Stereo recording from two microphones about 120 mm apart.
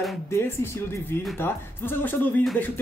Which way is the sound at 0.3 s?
20° left (ahead or behind).